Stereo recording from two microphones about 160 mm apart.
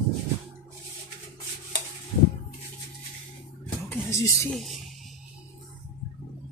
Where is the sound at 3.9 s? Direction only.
20° left (ahead or behind).